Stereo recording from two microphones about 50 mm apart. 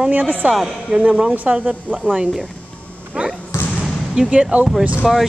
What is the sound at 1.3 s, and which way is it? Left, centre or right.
Speech, right.